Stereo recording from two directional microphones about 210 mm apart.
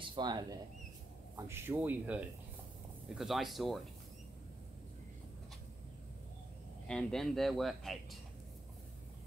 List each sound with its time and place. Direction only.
0.0 s speech: 20° right (ahead or behind); by 3.8 s centre (ahead or behind)
6.9 s speech: 5° left (ahead or behind)